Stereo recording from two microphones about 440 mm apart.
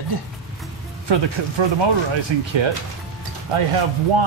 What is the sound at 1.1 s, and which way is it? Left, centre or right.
Speech, right.